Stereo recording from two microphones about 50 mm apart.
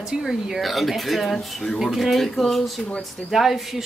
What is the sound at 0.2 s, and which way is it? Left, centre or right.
Speech, centre.